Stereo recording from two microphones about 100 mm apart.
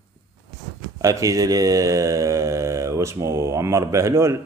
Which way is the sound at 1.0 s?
35° right (ahead or behind).